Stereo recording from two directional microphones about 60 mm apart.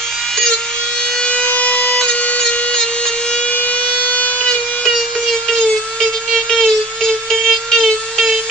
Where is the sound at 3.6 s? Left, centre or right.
Left.